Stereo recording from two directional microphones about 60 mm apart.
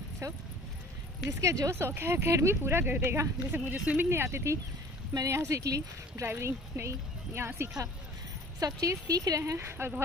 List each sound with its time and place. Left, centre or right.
0.2 s speech: right
1.4 s speech: right
1.8 s speech: right
3.7 s speech: right
4.1 s speech: right
6.2 s speech: right
8.8 s speech: right
9.4 s speech: right